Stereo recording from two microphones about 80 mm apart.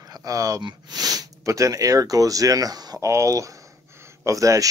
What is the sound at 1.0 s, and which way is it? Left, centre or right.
Speech, right.